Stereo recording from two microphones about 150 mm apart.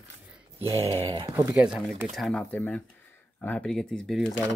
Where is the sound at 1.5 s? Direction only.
5° right (ahead or behind).